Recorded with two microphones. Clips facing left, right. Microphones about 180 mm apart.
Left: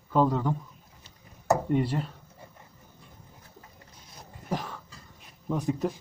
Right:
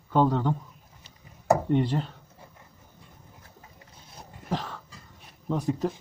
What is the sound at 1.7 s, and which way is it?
Speech, 5° left (ahead or behind).